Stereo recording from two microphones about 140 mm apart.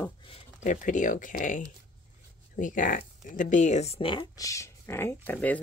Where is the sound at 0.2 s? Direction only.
40° left (ahead or behind).